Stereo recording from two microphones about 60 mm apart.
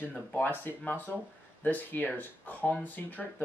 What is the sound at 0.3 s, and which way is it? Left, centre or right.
Speech, left.